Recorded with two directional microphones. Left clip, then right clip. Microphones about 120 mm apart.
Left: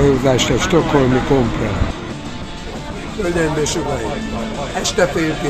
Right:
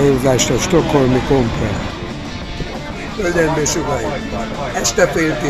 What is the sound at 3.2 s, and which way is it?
Speech, 10° right (ahead or behind).